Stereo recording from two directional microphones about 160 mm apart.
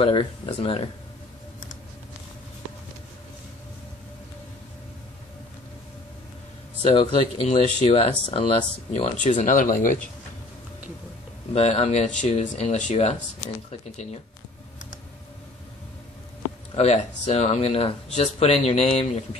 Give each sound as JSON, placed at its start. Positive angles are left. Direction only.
{"t": 0.0, "sound": "speech", "side_deg": 35}
{"t": 6.8, "sound": "speech", "side_deg": 35}
{"t": 11.5, "sound": "speech", "side_deg": 40}
{"t": 16.7, "sound": "speech", "side_deg": 40}